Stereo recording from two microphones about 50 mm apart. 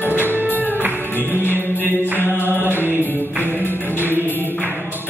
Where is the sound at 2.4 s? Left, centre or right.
Right.